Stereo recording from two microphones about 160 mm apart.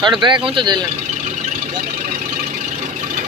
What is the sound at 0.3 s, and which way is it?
Speech, 35° right (ahead or behind).